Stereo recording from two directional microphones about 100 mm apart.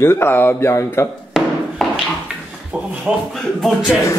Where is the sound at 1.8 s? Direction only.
Centre (ahead or behind).